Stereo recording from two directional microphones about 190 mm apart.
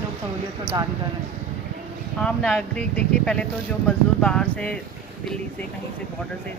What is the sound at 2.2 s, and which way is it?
Speech, 5° left (ahead or behind).